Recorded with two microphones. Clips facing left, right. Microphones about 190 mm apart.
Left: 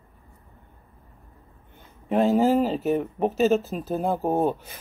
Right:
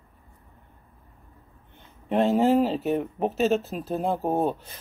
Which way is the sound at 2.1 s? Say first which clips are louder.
Left 1 dB; centre (ahead or behind).